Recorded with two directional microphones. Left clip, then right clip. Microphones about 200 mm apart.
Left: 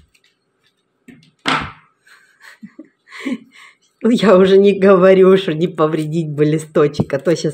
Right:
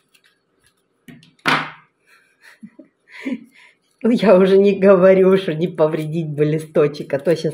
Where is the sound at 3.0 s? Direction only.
25° left (ahead or behind).